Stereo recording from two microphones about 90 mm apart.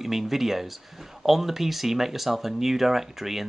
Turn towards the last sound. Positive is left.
turn(degrees=0)  # may be behind; listen again after turning